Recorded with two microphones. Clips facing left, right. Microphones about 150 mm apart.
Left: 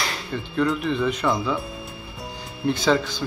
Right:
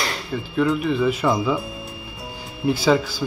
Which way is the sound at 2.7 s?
5° right (ahead or behind).